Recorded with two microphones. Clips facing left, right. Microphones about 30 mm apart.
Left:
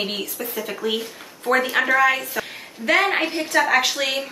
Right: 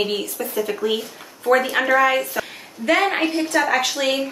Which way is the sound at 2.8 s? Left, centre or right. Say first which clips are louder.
Right 1 dB; left.